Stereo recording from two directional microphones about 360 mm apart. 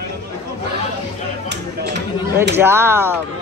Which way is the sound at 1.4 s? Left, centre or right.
Right.